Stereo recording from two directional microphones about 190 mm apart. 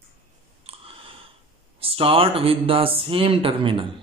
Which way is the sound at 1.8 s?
30° right (ahead or behind).